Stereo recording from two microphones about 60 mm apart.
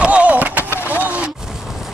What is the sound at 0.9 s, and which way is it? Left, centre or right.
Vehicle, right.